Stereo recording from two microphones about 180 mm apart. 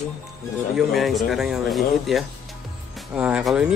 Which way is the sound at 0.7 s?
Centre (ahead or behind).